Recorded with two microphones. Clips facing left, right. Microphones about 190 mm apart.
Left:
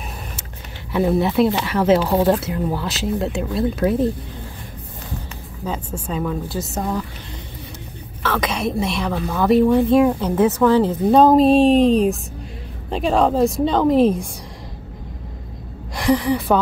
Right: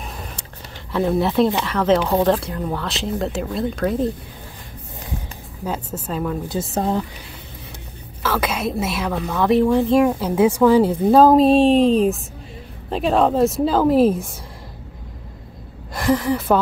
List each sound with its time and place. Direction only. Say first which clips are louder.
0.9 s a woman's voice: left 1 dB; centre (ahead or behind)
5.7 s a woman's voice: even; 5° right (ahead or behind)
6.5 s speech: right 3 dB; 30° right (ahead or behind)
8.2 s a woman's voice: even; 5° right (ahead or behind)
15.9 s a woman's voice: left 1 dB; centre (ahead or behind)